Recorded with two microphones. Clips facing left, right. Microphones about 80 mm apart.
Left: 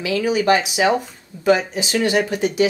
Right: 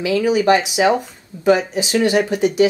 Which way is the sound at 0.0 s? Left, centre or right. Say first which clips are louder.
Right 3 dB; right.